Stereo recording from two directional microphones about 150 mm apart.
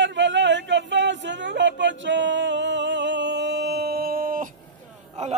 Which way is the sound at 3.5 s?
90° right.